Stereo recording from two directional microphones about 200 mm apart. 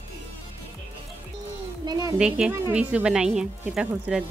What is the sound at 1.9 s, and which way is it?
Speech, 20° right (ahead or behind).